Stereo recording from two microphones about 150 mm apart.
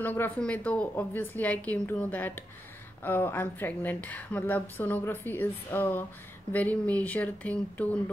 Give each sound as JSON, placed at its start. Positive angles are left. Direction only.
{"t": 0.0, "sound": "a woman's voice", "side_deg": 10}